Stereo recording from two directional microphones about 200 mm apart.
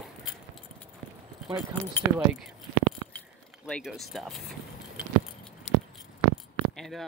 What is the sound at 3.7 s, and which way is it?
Speech, centre (ahead or behind).